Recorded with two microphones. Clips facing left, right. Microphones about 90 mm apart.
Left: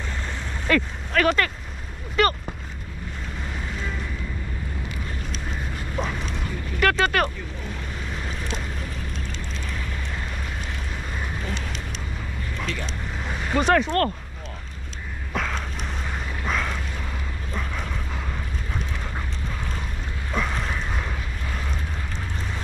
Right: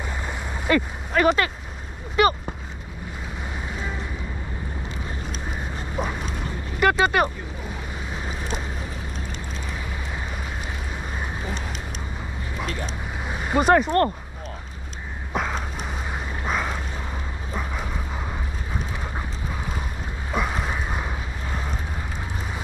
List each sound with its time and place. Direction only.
0.7 s speech: 15° right (ahead or behind)
3.6 s boat: 10° right (ahead or behind)
5.9 s boat: 10° right (ahead or behind)
12.8 s boat: 10° right (ahead or behind)
15.3 s a sound: 15° right (ahead or behind)
17.5 s vehicle: 10° right (ahead or behind)
20.2 s a sound: 10° right (ahead or behind)